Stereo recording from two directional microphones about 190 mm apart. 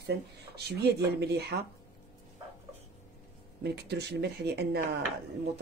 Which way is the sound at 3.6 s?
60° right (ahead or behind).